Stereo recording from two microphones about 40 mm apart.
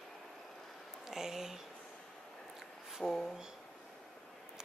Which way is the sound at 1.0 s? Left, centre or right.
Centre.